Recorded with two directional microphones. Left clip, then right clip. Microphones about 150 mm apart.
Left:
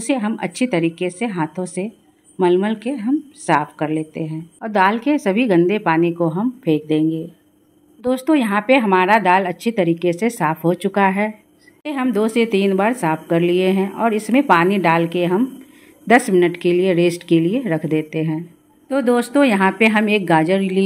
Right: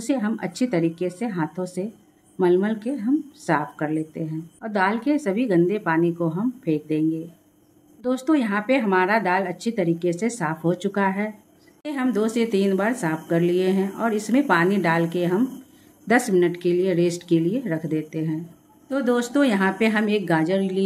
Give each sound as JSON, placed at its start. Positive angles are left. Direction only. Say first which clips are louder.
{"t": 0.0, "sound": "a woman's voice", "louder": "left 4 dB", "side_deg": 25}